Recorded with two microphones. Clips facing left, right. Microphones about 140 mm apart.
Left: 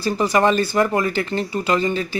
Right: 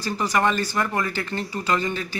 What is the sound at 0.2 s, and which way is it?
Speech, 20° left (ahead or behind).